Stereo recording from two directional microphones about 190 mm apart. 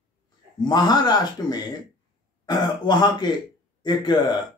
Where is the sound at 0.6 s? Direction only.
20° left (ahead or behind).